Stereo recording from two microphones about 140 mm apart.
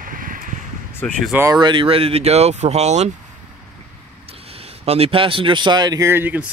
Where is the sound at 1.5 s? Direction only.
35° right (ahead or behind); by 3.1 s 55° right (ahead or behind).